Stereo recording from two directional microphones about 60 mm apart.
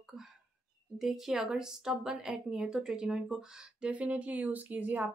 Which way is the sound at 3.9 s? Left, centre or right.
Right.